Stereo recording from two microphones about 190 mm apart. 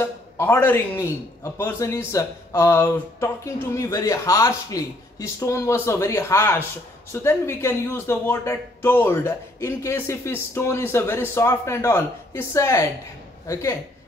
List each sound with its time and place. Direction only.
0.0 s speech: 15° left (ahead or behind)